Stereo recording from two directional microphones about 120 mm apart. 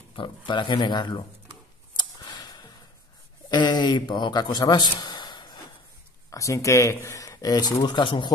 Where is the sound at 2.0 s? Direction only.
35° left (ahead or behind).